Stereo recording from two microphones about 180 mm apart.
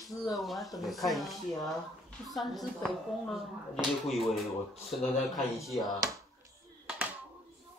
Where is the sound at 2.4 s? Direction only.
Centre (ahead or behind).